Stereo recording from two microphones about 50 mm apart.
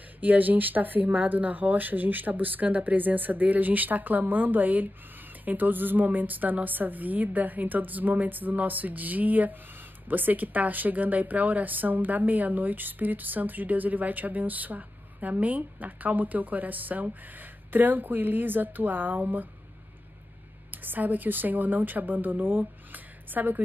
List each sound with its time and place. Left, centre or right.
0.2 s speech: right
20.7 s speech: right